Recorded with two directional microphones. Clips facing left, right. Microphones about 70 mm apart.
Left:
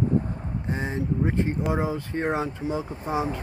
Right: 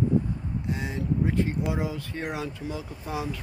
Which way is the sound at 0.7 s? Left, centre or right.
Left.